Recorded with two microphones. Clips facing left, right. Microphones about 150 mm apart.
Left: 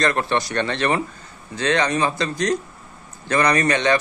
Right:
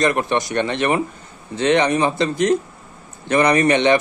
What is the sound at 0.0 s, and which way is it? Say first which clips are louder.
Speech: right 2 dB; 20° right (ahead or behind).